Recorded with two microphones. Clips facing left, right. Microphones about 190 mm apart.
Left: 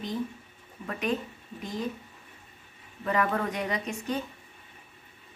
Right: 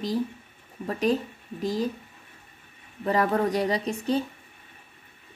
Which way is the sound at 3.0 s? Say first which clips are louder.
Right 4 dB; 35° right (ahead or behind).